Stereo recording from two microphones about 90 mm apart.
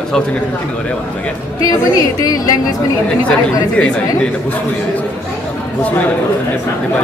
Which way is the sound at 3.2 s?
15° left (ahead or behind).